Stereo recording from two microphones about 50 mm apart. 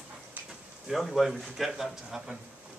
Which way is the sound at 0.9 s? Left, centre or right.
Centre.